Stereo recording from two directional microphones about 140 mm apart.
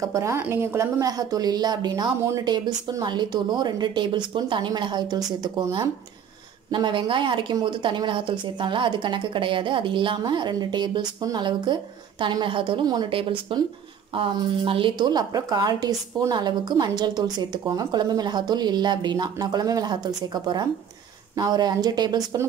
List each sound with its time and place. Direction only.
0.0 s a woman's voice: 20° right (ahead or behind)